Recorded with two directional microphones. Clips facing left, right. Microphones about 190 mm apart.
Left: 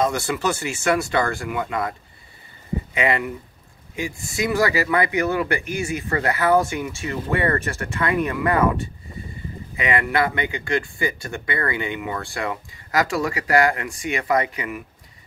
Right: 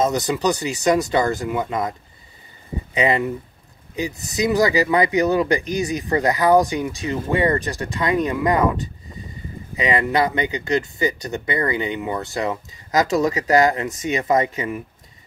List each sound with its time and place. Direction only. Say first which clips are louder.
0.0 s speech: right 2 dB; 20° right (ahead or behind)
4.3 s speech: right 3 dB; 20° right (ahead or behind)
9.8 s speech: right 2 dB; 20° right (ahead or behind)